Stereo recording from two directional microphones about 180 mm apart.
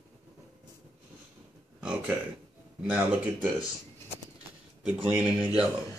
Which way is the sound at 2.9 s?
10° right (ahead or behind).